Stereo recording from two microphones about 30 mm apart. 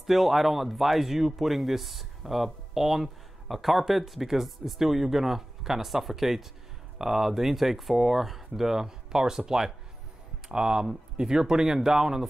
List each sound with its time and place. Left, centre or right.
0.0 s speech: centre
10.5 s speech: right